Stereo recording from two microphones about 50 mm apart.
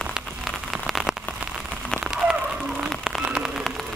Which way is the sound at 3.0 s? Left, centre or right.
Centre.